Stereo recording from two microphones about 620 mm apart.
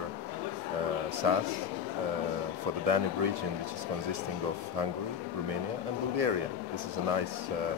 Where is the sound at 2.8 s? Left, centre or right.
Right.